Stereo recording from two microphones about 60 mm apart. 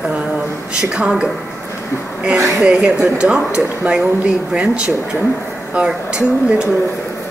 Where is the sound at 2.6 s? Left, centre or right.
Centre.